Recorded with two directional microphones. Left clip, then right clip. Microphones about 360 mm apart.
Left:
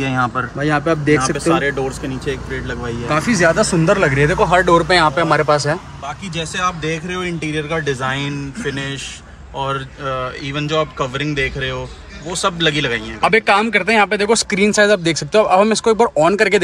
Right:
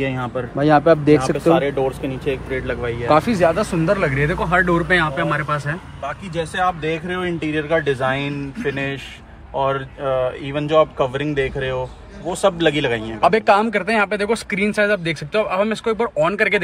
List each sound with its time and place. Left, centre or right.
1.0 s speech: centre
3.1 s speech: centre
3.3 s speech: centre
6.5 s a man's voice: centre
9.7 s a man's voice: centre
13.2 s speech: centre